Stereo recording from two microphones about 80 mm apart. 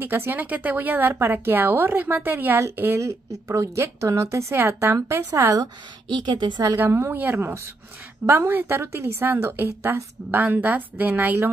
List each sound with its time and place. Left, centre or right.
0.0 s a woman's voice: right
6.1 s a woman's voice: right
6.8 s a woman's voice: right